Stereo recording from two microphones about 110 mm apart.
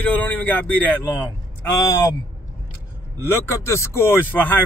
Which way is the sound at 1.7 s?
30° left (ahead or behind).